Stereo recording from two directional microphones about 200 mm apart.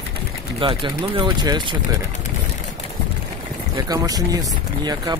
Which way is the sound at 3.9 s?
20° right (ahead or behind).